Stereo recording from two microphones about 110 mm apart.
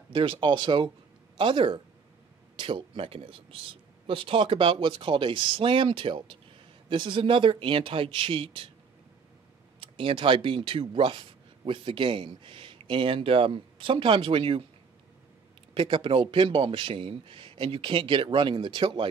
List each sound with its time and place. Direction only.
0.1 s speech: 55° right (ahead or behind)
9.8 s speech: 50° right (ahead or behind)
15.7 s speech: 55° right (ahead or behind)